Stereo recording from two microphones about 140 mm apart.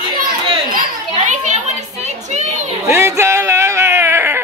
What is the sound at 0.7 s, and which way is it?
Children playing, 75° right (ahead or behind).